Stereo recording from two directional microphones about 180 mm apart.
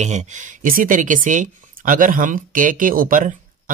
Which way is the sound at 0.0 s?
40° right (ahead or behind).